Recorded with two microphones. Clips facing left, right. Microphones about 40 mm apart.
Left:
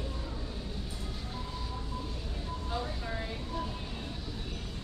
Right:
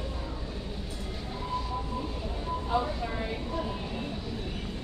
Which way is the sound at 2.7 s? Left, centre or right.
Right.